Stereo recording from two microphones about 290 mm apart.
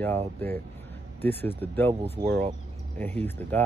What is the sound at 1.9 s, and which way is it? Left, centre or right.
Speech, centre.